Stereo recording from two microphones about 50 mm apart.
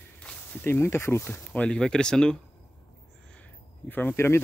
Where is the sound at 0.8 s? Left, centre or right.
Left.